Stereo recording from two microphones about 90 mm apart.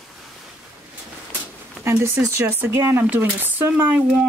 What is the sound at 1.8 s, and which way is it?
Speech, 30° right (ahead or behind).